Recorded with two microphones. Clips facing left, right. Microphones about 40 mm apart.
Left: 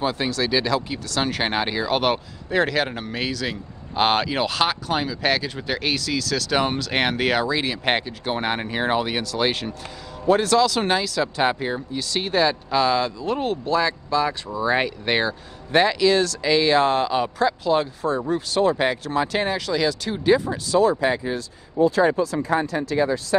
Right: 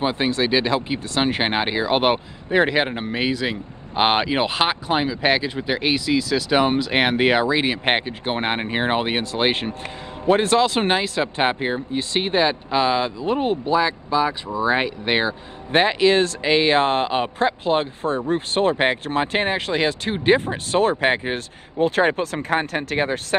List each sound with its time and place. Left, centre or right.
0.0 s speech: right
15.8 s speech: right
22.5 s speech: right